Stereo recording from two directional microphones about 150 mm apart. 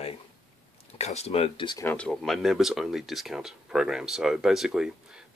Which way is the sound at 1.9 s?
5° left (ahead or behind).